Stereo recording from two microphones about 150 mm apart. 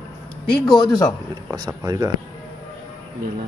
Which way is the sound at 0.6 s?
30° left (ahead or behind).